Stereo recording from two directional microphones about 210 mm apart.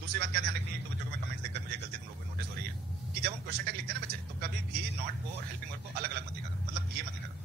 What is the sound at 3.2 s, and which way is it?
A man's voice, 50° right (ahead or behind).